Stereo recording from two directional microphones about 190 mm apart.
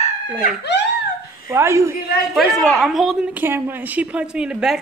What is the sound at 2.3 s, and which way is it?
A woman's voice, centre (ahead or behind).